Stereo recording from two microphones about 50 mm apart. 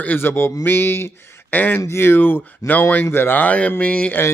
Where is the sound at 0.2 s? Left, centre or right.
Left.